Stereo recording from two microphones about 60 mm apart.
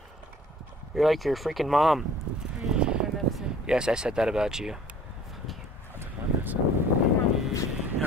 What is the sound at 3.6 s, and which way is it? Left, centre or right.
Speech, centre.